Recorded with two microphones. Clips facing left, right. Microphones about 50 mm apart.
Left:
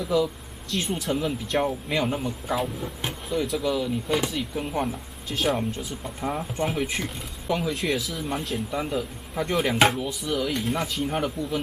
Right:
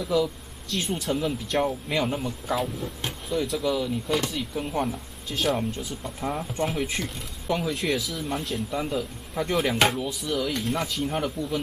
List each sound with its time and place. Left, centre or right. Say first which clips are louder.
0.0 s speech: left 1 dB; centre